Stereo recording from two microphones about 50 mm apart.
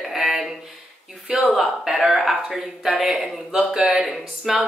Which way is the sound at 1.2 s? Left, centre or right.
Right.